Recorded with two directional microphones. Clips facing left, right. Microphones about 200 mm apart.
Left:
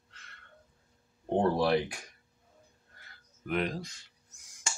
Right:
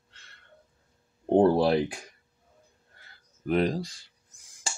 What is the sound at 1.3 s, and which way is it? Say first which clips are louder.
Speech: right 6 dB; 30° right (ahead or behind).